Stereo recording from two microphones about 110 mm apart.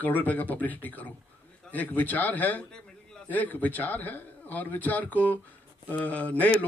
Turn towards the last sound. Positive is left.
turn(degrees=15)  # may be behind; listen again after turning